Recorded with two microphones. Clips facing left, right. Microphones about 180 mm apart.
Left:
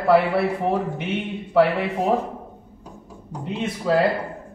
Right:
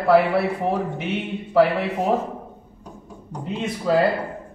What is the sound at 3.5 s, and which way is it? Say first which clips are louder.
Speech: even; centre (ahead or behind).